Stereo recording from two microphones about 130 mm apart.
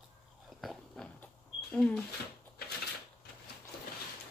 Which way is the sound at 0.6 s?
Centre (ahead or behind).